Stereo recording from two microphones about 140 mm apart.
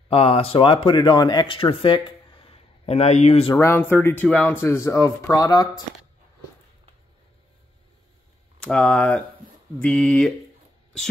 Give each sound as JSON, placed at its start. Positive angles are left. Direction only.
{"t": 0.1, "sound": "speech", "side_deg": 45}
{"t": 3.5, "sound": "speech", "side_deg": 15}
{"t": 8.5, "sound": "speech", "side_deg": 5}